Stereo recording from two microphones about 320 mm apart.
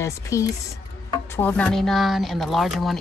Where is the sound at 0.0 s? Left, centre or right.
Centre.